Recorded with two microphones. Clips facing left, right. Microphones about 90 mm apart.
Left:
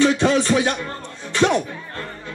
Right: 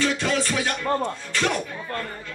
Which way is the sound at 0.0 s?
20° left (ahead or behind).